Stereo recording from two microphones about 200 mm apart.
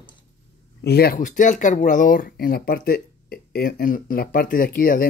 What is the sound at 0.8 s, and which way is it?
Speech, 50° left (ahead or behind).